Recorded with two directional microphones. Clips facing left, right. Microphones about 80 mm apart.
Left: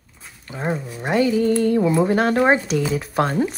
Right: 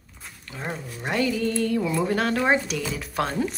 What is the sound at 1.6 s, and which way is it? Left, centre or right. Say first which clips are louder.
Speech: left 6 dB; left.